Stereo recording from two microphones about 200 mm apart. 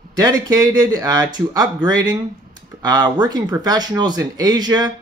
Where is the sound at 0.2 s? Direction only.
15° right (ahead or behind).